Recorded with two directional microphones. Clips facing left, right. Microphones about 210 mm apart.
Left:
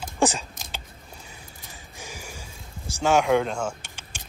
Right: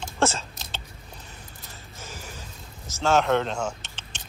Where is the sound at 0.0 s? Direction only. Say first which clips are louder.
Left 1 dB; 15° left (ahead or behind).